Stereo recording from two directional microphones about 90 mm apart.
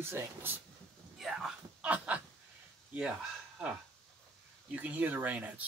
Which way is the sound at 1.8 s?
15° right (ahead or behind).